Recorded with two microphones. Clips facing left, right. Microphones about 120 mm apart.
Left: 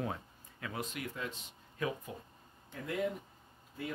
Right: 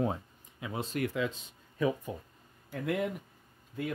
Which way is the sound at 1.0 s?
90° right.